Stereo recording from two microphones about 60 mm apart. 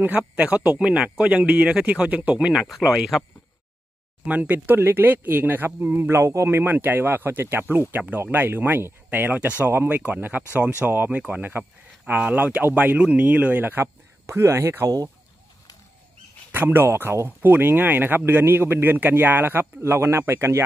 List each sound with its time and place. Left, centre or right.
0.2 s speech: right; by 3.3 s centre
4.2 s speech: right
4.7 s speech: right
6.5 s speech: right
14.2 s speech: right
16.5 s speech: right
17.5 s speech: right